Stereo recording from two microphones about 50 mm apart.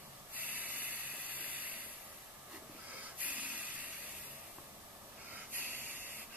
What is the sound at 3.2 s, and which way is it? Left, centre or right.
Spray, right.